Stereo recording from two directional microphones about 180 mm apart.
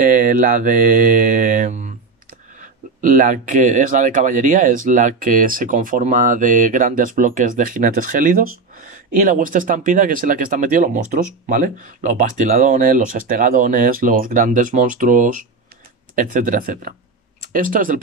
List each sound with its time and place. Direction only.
0.0 s speech: 45° right (ahead or behind)